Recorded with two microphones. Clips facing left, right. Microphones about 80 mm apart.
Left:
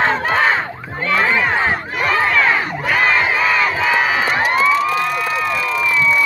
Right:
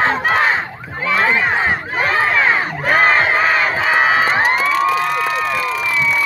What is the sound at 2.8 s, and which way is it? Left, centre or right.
Crowd, right.